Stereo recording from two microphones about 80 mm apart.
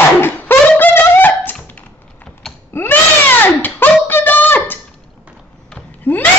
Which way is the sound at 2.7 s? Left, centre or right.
Left.